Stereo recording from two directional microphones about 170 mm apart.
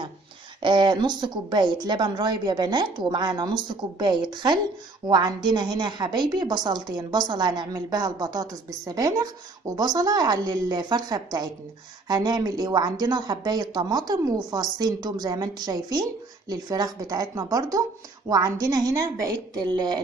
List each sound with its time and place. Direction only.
0.6 s speech: 25° right (ahead or behind)